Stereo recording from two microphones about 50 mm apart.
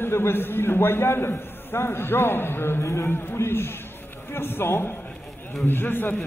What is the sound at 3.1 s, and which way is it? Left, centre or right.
A man's voice, left.